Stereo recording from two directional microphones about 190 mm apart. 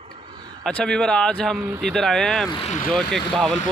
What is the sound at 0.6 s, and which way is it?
Speech, 5° left (ahead or behind).